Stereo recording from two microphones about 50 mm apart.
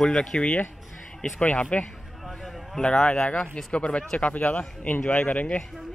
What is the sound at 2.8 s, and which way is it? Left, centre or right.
Speech, centre.